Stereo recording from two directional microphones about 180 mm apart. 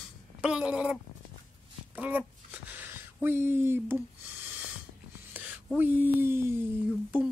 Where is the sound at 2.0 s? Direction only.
10° right (ahead or behind).